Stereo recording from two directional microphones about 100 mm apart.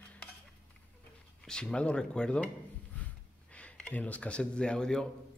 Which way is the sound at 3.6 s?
15° left (ahead or behind).